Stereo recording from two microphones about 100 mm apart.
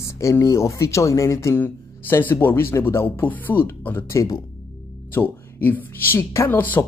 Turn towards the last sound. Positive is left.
turn(degrees=20)  # may be behind; listen again after turning